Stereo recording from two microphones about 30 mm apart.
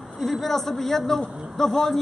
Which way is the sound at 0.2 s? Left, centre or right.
Centre.